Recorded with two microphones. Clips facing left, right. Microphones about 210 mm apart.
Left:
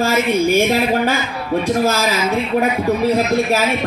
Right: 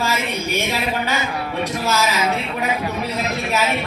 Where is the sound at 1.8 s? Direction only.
50° left (ahead or behind).